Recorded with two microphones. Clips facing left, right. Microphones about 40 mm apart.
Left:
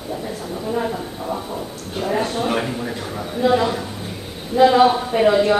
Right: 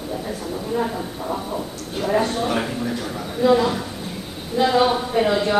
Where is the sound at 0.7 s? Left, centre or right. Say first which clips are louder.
Left 1 dB; centre.